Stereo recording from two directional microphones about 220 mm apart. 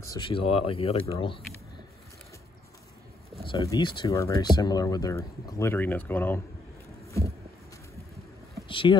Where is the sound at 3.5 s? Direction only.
15° left (ahead or behind).